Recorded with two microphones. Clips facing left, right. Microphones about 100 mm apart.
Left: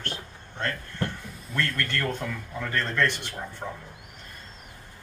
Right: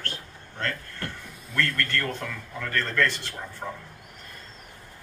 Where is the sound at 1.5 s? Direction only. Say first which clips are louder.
Right 1 dB; 20° left (ahead or behind).